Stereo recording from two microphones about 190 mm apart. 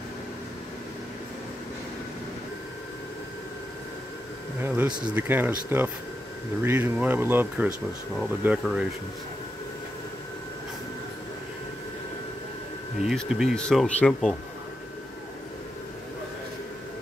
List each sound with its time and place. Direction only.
4.6 s a sound: 10° right (ahead or behind)
5.0 s speech: 10° right (ahead or behind)
13.0 s speech: centre (ahead or behind)